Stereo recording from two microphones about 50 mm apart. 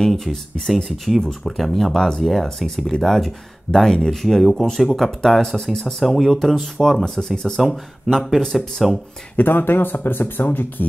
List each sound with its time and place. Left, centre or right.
0.0 s speech: centre
9.4 s speech: left